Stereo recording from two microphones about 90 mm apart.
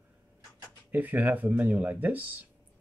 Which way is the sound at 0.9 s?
20° right (ahead or behind).